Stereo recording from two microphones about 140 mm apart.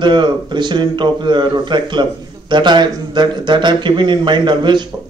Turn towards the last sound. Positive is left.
turn(degrees=-35)  # may be behind; listen again after turning